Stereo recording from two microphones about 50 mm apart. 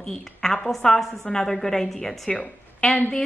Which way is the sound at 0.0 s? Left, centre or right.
Centre.